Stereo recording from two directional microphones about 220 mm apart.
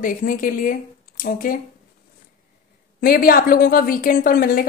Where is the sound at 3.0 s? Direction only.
40° left (ahead or behind).